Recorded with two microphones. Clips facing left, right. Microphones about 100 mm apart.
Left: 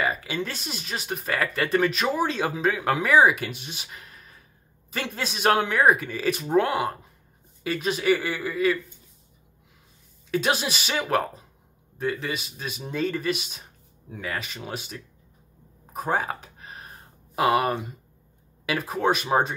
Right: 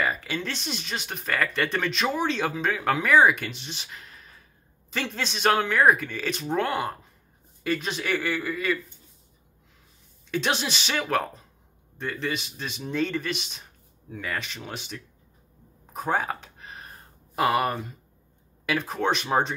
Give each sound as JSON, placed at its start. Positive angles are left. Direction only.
{"t": 0.0, "sound": "speech", "side_deg": 5}
{"t": 10.3, "sound": "speech", "side_deg": 5}
{"t": 15.9, "sound": "a sound", "side_deg": 0}
{"t": 17.4, "sound": "speech", "side_deg": 5}